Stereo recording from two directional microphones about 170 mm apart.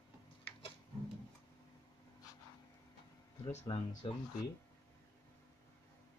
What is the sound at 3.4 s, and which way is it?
Speech, 30° left (ahead or behind).